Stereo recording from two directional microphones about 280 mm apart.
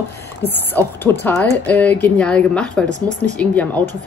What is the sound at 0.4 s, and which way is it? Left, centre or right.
Heart sounds, right.